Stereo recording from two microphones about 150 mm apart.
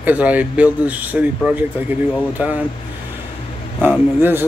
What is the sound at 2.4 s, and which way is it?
Speech, 10° right (ahead or behind).